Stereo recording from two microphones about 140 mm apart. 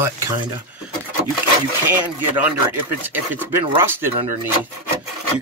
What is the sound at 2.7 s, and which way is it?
Speech, 15° right (ahead or behind).